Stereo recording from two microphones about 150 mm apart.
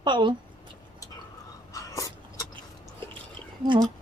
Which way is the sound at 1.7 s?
20° left (ahead or behind).